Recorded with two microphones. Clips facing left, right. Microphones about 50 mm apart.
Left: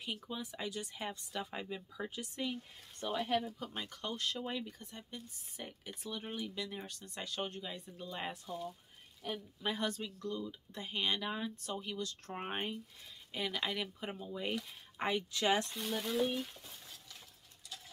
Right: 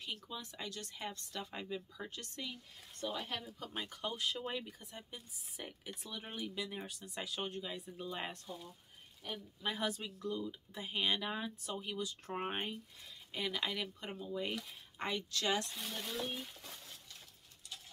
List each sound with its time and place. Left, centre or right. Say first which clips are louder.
0.0 s speech: left 3 dB; centre
2.5 s speech: left 6 dB; left
3.4 s speech: left 2 dB; centre
3.8 s speech: right 1 dB; centre
9.8 s speech: left 1 dB; centre; by 15.7 s left
15.7 s speech: left 6 dB; centre